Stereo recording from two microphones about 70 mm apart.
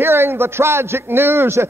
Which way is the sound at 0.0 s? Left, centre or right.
Right.